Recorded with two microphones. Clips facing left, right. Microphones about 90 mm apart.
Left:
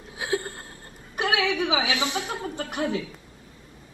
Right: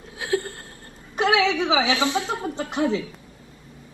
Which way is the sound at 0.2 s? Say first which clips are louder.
Right 3 dB; 20° left (ahead or behind).